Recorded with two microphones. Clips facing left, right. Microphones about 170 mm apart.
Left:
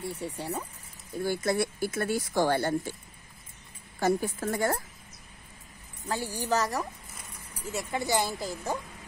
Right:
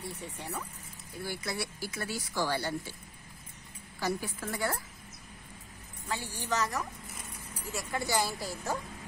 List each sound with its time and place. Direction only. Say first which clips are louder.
0.1 s a woman's voice: left 6 dB; 35° left (ahead or behind)
1.2 s speech: left 9 dB; 50° left (ahead or behind)
4.0 s speech: left 7 dB; 50° left (ahead or behind)
6.0 s a woman's voice: left 5 dB; 35° left (ahead or behind)
7.7 s speech: left 3 dB; 20° left (ahead or behind)